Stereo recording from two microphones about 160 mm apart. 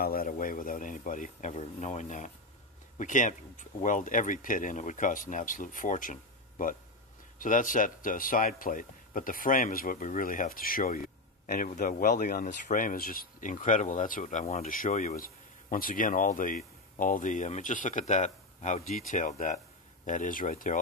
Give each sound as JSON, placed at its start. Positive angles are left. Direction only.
{"t": 0.0, "sound": "speech", "side_deg": 65}
{"t": 7.3, "sound": "a man's voice", "side_deg": 55}
{"t": 14.7, "sound": "speech", "side_deg": 55}